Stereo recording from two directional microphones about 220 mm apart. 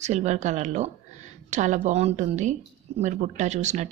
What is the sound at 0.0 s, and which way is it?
Speech, 30° right (ahead or behind).